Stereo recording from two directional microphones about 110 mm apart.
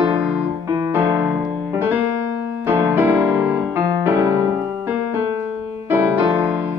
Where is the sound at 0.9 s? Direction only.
20° right (ahead or behind).